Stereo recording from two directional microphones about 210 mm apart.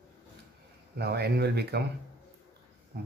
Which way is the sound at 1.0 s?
50° right (ahead or behind).